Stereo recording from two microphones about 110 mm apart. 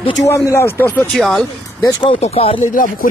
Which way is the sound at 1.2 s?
Centre (ahead or behind).